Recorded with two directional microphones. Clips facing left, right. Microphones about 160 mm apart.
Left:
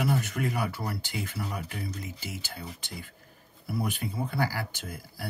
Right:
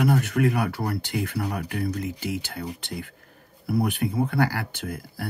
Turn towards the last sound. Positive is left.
turn(degrees=-60)  # may be behind; listen again after turning